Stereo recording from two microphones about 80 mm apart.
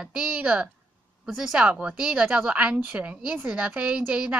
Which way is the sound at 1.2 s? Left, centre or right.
Centre.